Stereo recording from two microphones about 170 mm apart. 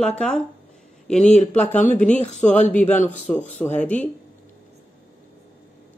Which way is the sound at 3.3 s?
45° left (ahead or behind).